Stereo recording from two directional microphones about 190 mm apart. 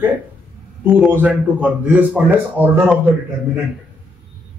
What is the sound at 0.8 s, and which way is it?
A man's voice, 10° right (ahead or behind).